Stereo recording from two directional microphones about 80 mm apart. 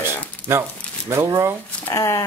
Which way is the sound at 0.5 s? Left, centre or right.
Right.